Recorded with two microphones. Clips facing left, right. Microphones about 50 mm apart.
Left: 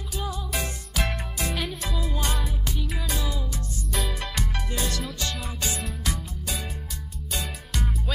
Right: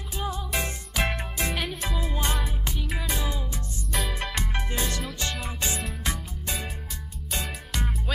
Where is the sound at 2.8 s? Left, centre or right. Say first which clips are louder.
Right 2 dB; centre.